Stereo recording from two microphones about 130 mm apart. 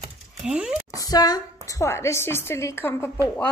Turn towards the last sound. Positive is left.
turn(degrees=15)  # may be behind; listen again after turning